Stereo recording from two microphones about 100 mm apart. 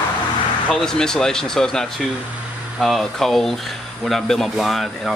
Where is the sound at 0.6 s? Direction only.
5° left (ahead or behind).